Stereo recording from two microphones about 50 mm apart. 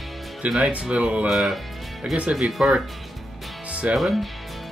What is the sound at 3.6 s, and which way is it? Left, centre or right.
Music, right.